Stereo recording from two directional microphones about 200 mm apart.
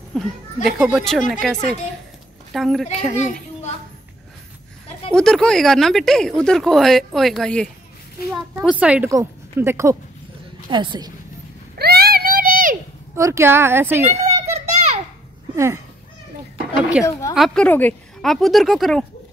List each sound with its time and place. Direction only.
0.1 s speech: centre (ahead or behind)
5.1 s speech: 5° left (ahead or behind)
8.7 s a woman's voice: 5° right (ahead or behind)
10.7 s a woman's voice: 25° right (ahead or behind)
11.8 s a sound: 50° right (ahead or behind)
13.1 s a woman's voice: 15° right (ahead or behind)
14.2 s children playing: 35° right (ahead or behind)
15.5 s speech: 15° right (ahead or behind)
17.0 s a woman's voice: 10° right (ahead or behind)